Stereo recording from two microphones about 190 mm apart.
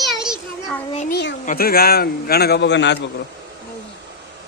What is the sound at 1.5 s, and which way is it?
A man's voice, 50° left (ahead or behind).